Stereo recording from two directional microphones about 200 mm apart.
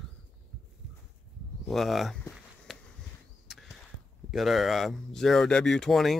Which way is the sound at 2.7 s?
Centre (ahead or behind).